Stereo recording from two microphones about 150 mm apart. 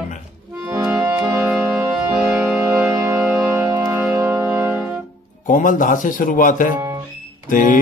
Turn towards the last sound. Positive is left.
turn(degrees=60)  # may be behind; listen again after turning